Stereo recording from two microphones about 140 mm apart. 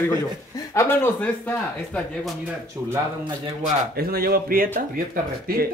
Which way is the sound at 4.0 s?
90° right.